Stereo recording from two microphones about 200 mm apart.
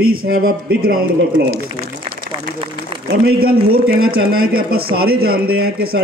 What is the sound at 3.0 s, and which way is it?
Speech, 50° right (ahead or behind).